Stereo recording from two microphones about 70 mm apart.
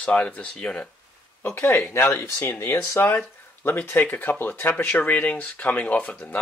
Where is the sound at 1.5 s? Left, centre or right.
Left.